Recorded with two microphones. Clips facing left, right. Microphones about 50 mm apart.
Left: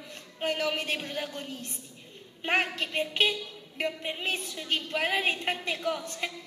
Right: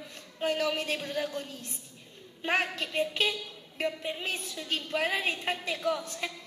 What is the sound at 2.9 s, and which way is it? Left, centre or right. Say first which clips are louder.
A woman's voice: left 1 dB; left.